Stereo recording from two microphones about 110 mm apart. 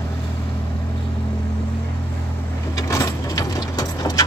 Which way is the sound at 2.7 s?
30° left (ahead or behind).